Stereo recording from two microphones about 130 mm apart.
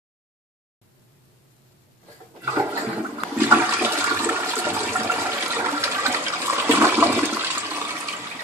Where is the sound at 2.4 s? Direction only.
15° right (ahead or behind).